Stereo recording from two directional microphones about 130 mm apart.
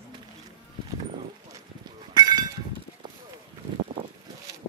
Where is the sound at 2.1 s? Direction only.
35° right (ahead or behind).